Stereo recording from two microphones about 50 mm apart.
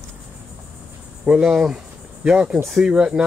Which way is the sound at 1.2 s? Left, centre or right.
Centre.